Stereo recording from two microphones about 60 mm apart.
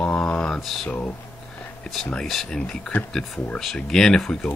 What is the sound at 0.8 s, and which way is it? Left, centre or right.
Speech, left.